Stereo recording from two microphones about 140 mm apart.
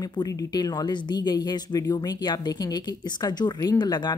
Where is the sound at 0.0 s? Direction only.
30° left (ahead or behind).